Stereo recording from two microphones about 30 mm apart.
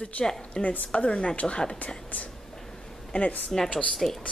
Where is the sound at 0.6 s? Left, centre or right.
Left.